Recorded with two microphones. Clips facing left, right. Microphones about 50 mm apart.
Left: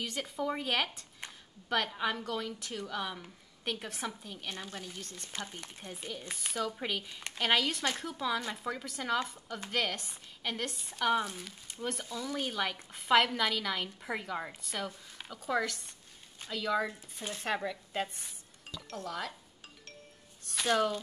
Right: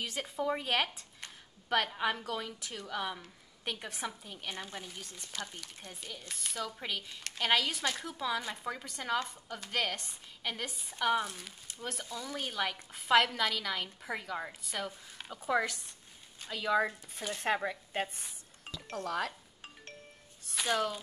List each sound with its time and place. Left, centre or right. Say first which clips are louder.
0.0 s a woman's voice: even; centre
5.8 s a woman's voice: left 6 dB; centre
17.2 s speech: right 2 dB; right
18.9 s speech: right 4 dB; right
20.4 s speech: left 3 dB; centre